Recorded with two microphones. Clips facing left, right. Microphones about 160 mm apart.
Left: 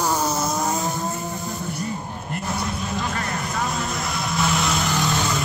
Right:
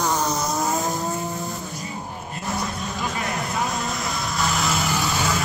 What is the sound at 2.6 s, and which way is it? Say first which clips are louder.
Vehicle: left 1 dB; centre (ahead or behind).